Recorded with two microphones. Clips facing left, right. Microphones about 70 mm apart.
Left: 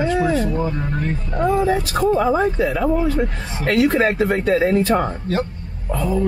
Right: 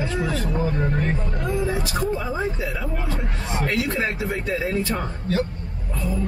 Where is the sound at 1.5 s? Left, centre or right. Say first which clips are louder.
Left 6 dB; left.